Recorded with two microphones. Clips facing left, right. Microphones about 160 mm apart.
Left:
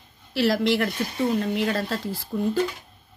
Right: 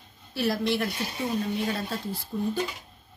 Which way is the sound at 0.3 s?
90° left.